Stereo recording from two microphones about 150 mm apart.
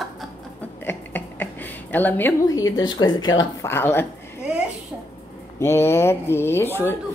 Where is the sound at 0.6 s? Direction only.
10° left (ahead or behind).